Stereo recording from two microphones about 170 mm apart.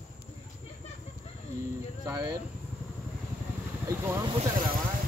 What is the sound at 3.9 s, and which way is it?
Speech, 15° right (ahead or behind).